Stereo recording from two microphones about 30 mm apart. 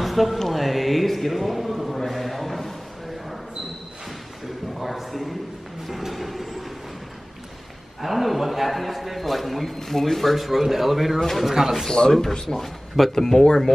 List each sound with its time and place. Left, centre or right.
0.0 s a sound: centre
0.5 s a man's voice: centre
2.0 s a sound: centre
4.7 s a sound: centre
8.0 s a man's voice: centre
10.3 s a man's voice: centre
11.1 s speech: centre
11.4 s speech: centre
12.1 s a man's voice: centre
13.3 s speech: left